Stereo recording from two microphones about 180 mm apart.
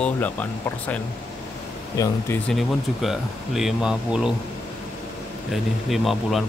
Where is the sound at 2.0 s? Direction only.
15° left (ahead or behind).